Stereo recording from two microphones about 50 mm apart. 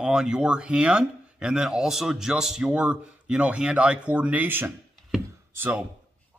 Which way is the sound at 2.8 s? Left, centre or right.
Right.